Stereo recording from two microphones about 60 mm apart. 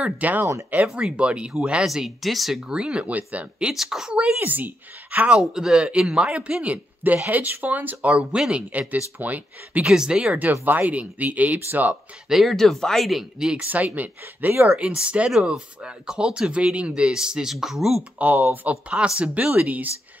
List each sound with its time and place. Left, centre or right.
0.2 s speech: right
2.0 s speech: centre
2.7 s speech: centre
3.7 s speech: centre
4.1 s speech: right
5.4 s speech: centre; by 9.8 s right
9.8 s speech: centre; by 11.9 s right
11.9 s speech: centre
13.7 s speech: right
14.7 s speech: centre
18.2 s speech: right